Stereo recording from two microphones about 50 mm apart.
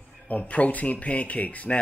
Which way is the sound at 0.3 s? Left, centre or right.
Left.